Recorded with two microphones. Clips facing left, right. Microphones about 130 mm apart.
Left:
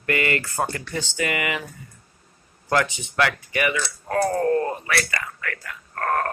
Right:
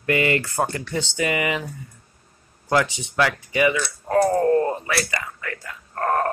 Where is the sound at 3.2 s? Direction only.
20° right (ahead or behind).